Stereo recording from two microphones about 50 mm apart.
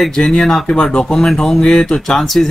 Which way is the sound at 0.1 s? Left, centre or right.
Centre.